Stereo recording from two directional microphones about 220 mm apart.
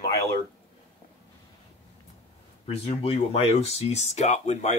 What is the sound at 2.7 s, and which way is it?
Speech, 25° left (ahead or behind).